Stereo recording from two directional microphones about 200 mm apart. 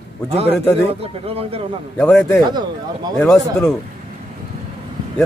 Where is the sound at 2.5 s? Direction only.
20° right (ahead or behind).